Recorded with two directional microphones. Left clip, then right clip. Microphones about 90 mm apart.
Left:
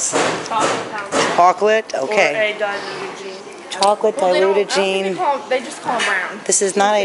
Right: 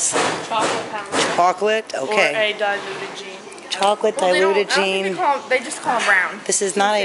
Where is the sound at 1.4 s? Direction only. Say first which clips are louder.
Left 5 dB; 5° right (ahead or behind).